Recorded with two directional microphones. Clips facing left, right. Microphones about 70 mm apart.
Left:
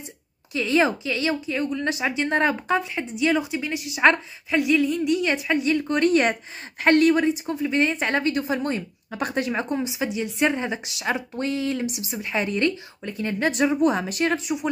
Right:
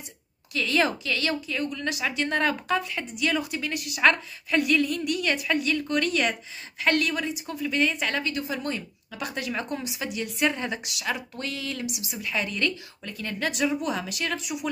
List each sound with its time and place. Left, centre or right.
0.5 s a woman's voice: left
13.5 s speech: left